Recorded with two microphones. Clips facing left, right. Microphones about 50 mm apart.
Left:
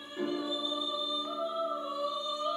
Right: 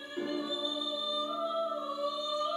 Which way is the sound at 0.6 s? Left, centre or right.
Left.